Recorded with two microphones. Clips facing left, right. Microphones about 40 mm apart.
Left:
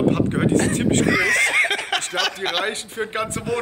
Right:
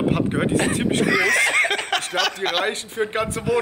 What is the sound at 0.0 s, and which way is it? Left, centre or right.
A man's voice, centre.